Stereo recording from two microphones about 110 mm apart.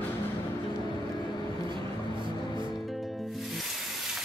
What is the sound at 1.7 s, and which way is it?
Music, 45° right (ahead or behind).